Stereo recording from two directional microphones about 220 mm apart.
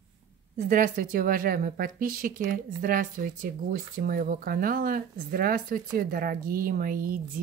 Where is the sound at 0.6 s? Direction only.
35° right (ahead or behind).